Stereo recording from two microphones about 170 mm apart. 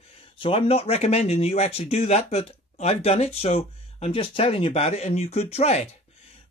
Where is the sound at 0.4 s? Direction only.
35° left (ahead or behind).